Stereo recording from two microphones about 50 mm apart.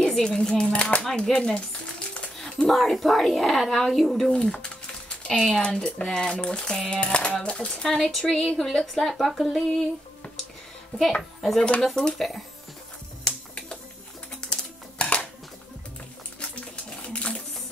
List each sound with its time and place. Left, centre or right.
0.0 s a woman's voice: centre
4.3 s a sound: centre
5.6 s a woman's voice: centre
7.9 s a woman's voice: centre
11.0 s a woman's voice: centre
13.2 s finger snapping: centre
14.4 s music: centre
15.0 s a sound: left
16.3 s a sound: left